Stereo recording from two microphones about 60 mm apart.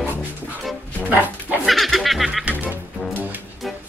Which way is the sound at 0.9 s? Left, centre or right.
Right.